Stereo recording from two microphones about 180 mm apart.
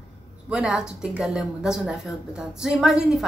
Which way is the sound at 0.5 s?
5° right (ahead or behind).